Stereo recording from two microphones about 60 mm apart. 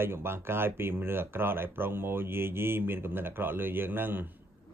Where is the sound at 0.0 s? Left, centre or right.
Right.